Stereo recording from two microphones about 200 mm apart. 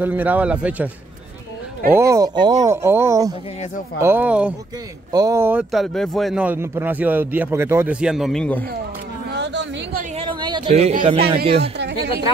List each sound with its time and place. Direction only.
0.0 s speech: 10° right (ahead or behind)
2.0 s speech: 15° right (ahead or behind); by 8.6 s 5° left (ahead or behind)
9.3 s a sound: 60° right (ahead or behind)
10.1 s a man's voice: 25° right (ahead or behind)